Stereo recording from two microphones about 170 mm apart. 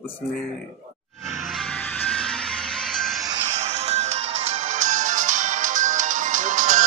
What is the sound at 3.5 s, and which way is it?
Music, 40° right (ahead or behind).